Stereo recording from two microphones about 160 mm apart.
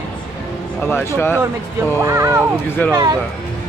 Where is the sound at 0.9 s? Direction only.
15° left (ahead or behind).